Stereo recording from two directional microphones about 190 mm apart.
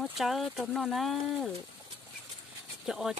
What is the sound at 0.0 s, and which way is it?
Speech, centre (ahead or behind).